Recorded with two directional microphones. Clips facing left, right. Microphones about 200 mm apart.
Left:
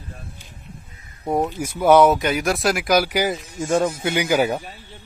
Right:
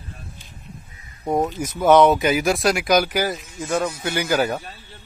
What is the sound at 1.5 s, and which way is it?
A man's voice, 10° left (ahead or behind).